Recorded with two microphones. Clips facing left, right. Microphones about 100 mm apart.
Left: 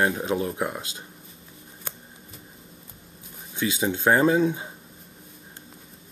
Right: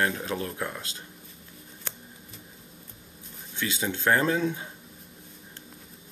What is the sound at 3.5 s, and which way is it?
Speech, 15° left (ahead or behind).